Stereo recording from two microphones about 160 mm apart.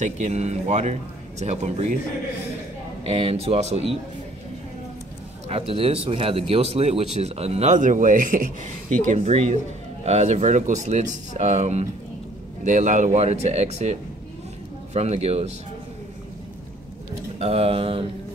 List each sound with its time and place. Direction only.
0.0 s speech: 45° right (ahead or behind)
3.1 s speech: 35° right (ahead or behind)
5.5 s speech: 35° right (ahead or behind); by 8.5 s 55° right (ahead or behind)
9.1 s speech: 45° right (ahead or behind)
15.0 s speech: 40° right (ahead or behind)
17.4 s speech: 40° right (ahead or behind)